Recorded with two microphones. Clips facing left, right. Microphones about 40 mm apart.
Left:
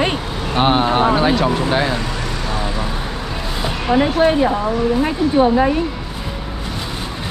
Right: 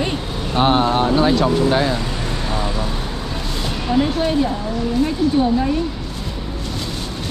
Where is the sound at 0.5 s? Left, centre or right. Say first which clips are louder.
Left 1 dB; centre.